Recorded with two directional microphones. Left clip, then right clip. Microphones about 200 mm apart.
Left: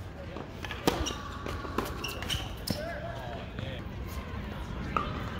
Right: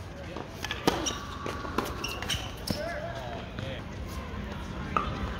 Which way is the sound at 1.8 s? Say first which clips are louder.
Right 2 dB; 5° right (ahead or behind).